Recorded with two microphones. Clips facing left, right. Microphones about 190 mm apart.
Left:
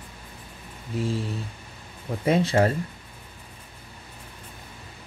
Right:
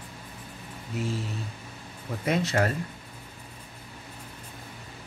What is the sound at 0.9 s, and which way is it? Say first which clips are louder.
Speech: left 4 dB; 30° left (ahead or behind).